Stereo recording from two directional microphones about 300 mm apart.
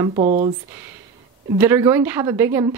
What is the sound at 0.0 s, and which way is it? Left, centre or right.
Speech, centre.